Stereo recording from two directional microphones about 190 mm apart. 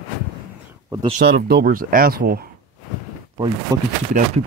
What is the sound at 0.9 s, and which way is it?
Speech, 25° right (ahead or behind).